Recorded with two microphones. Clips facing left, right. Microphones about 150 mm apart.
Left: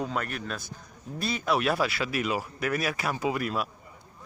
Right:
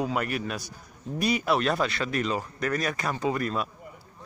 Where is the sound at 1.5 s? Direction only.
5° left (ahead or behind).